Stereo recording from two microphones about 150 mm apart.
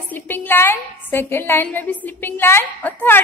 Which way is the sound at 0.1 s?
15° left (ahead or behind).